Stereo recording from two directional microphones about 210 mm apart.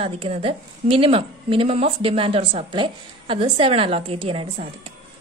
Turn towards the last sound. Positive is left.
turn(degrees=-25)  # may be behind; listen again after turning